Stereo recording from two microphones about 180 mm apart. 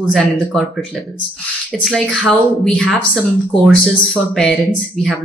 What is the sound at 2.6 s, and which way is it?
Speech, centre (ahead or behind).